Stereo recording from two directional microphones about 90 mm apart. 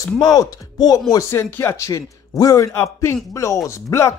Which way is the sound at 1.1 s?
30° left (ahead or behind).